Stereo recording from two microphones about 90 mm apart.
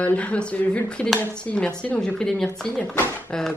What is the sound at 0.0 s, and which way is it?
Speech, 15° left (ahead or behind).